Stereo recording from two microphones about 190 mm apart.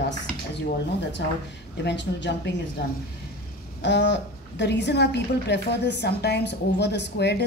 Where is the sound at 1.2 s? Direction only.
65° left (ahead or behind).